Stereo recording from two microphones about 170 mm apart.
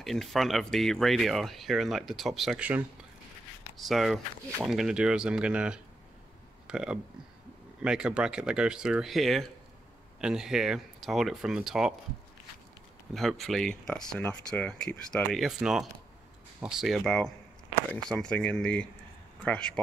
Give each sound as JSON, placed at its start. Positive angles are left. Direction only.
{"t": 0.0, "sound": "speech", "side_deg": 0}
{"t": 13.1, "sound": "speech", "side_deg": 0}